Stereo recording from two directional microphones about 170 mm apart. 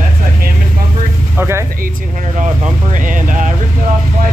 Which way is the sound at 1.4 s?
15° right (ahead or behind).